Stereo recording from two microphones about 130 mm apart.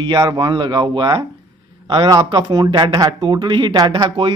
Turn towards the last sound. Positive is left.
turn(degrees=-35)  # may be behind; listen again after turning